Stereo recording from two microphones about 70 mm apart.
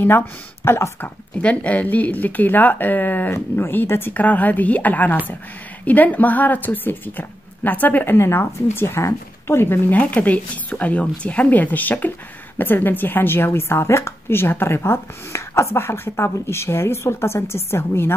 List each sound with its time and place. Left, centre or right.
0.7 s a woman's voice: left
1.4 s a woman's voice: centre; by 18.1 s left